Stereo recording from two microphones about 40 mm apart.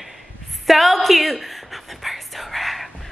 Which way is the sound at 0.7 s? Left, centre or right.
Centre.